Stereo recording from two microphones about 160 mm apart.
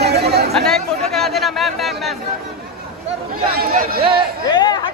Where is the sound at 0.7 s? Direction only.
5° left (ahead or behind).